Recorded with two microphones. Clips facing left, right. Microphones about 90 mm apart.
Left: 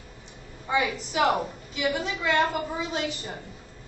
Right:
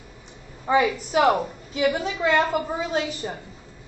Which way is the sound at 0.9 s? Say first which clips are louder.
Right 4 dB; 55° right (ahead or behind).